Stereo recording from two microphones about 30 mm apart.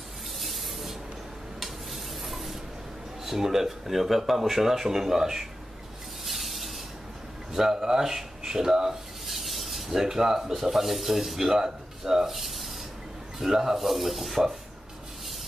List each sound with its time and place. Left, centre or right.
0.4 s spray: centre
1.6 s stir: centre
3.3 s speech: centre
6.2 s a sound: centre
7.5 s speech: centre
9.3 s a sound: centre
10.5 s speech: centre
12.3 s rub: centre
13.4 s speech: centre